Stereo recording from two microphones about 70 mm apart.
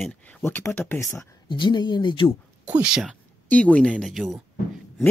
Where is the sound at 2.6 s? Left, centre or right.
Centre.